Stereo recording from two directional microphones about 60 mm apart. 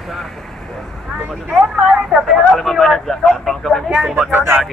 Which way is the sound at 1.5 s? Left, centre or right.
Centre.